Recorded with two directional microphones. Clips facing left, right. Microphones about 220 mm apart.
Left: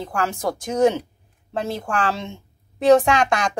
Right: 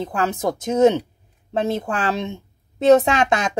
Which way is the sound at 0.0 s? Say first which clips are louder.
Right 2 dB; 20° right (ahead or behind).